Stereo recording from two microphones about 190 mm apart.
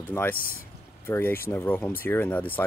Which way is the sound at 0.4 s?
50° left (ahead or behind).